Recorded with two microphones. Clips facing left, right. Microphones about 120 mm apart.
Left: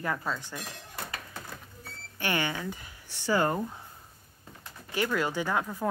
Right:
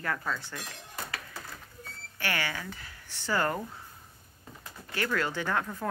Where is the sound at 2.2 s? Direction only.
20° left (ahead or behind).